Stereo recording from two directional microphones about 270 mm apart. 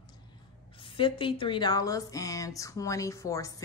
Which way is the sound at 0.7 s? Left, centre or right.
Centre.